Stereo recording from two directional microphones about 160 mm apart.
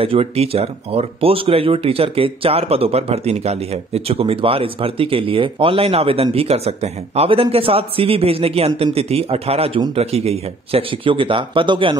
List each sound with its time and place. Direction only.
0.0 s speech: 35° right (ahead or behind)